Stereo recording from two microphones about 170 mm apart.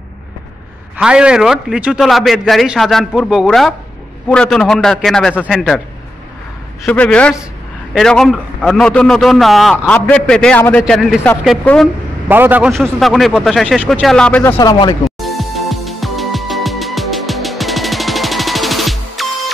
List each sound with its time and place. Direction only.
0.9 s a man's voice: 5° right (ahead or behind)
6.9 s a man's voice: 5° left (ahead or behind)
12.3 s a man's voice: 10° right (ahead or behind)
12.7 s a man's voice: centre (ahead or behind)
14.6 s speech: 20° left (ahead or behind)
15.0 s music: centre (ahead or behind)